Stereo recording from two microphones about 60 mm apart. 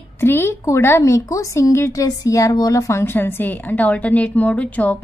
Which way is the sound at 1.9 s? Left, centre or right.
Left.